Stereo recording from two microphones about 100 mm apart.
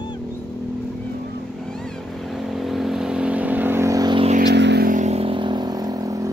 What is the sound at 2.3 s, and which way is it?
Vehicle, centre (ahead or behind).